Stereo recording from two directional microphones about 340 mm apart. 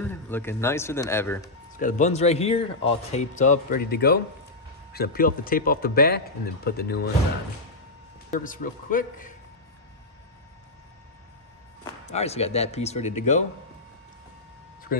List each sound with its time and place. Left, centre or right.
0.0 s speech: centre
1.7 s a man's voice: left
8.3 s a man's voice: left
11.8 s a man's voice: centre
14.9 s speech: left